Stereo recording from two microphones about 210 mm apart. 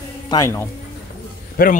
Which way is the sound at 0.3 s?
15° left (ahead or behind).